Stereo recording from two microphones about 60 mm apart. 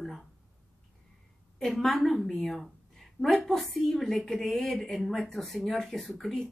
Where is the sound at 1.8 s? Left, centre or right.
Centre.